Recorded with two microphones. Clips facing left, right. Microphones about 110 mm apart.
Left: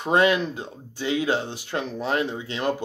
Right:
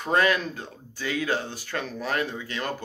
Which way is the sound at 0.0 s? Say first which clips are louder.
Left 3 dB; 20° left (ahead or behind).